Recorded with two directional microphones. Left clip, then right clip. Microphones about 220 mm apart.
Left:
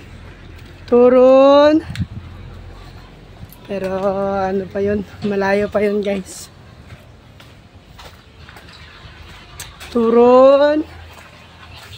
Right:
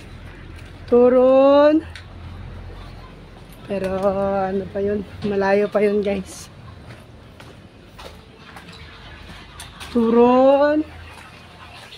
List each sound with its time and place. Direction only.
0.8 s speech: 25° left (ahead or behind)
3.6 s speech: 5° left (ahead or behind)
5.4 s speech: 5° left (ahead or behind)
9.9 s speech: 20° left (ahead or behind)